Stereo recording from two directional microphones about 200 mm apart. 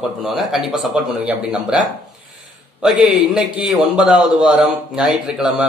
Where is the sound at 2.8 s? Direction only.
5° right (ahead or behind).